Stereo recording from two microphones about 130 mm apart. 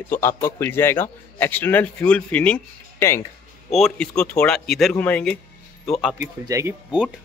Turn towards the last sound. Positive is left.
turn(degrees=-25)  # may be behind; listen again after turning